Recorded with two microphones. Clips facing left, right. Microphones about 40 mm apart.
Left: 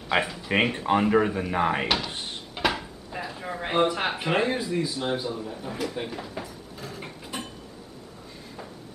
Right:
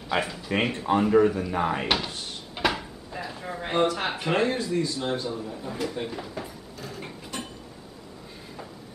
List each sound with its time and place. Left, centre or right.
0.1 s speech: centre
0.7 s speech: centre
2.5 s dishes: centre
3.3 s a sound: centre
4.1 s speech: centre
6.8 s a sound: centre